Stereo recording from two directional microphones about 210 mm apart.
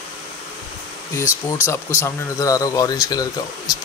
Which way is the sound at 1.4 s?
15° left (ahead or behind).